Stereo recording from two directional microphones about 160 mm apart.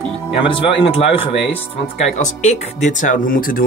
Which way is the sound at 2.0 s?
45° left (ahead or behind).